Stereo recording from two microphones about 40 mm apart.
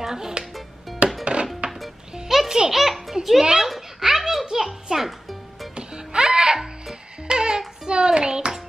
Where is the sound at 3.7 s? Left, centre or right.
Centre.